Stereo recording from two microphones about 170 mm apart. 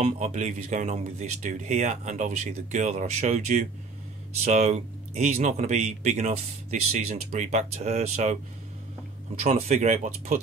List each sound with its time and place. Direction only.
0.0 s speech: 40° right (ahead or behind)
9.4 s speech: 40° right (ahead or behind)